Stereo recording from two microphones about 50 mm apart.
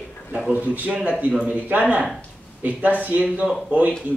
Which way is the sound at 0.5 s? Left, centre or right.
Right.